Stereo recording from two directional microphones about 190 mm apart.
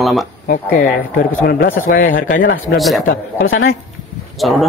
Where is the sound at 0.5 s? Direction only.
50° left (ahead or behind).